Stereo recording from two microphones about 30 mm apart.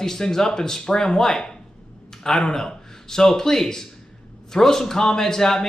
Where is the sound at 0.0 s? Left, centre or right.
Centre.